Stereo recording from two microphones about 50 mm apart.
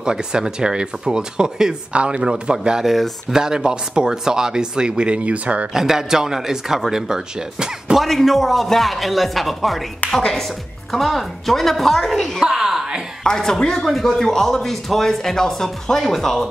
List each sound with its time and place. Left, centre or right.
0.0 s speech: centre
2.9 s speech: centre
3.3 s speech: centre
5.8 s speech: centre
8.0 s speech: centre
12.4 s a sound: centre
13.2 s speech: centre